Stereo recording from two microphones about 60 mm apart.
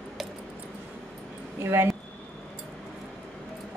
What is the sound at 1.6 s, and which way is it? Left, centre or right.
Speech, right.